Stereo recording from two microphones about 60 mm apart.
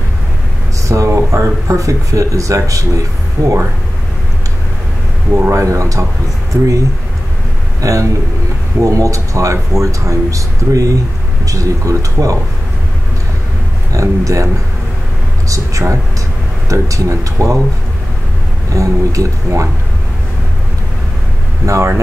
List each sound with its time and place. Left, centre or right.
0.8 s speech: right
5.5 s speech: right
6.5 s speech: right
7.8 s speech: right
13.9 s speech: right
18.8 s speech: right
21.6 s speech: right